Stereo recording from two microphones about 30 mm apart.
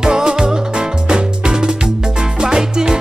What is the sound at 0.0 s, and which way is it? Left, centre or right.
Music, right.